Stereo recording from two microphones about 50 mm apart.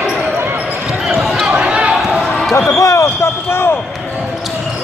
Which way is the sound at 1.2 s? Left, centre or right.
Centre.